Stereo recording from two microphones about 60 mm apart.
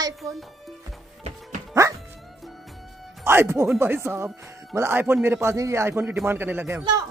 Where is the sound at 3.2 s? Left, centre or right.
Right.